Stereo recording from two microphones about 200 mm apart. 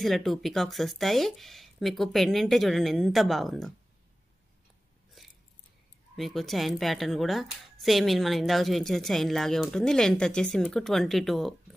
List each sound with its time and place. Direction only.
0.0 s speech: centre (ahead or behind)
5.2 s a sound: centre (ahead or behind)
6.1 s speech: centre (ahead or behind)